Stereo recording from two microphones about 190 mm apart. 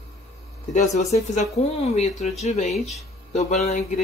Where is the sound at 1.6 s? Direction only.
35° left (ahead or behind).